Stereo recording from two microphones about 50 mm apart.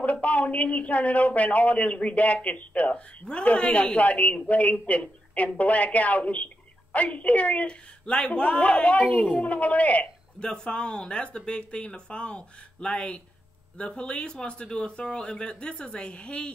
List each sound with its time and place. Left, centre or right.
0.0 s a man's voice: left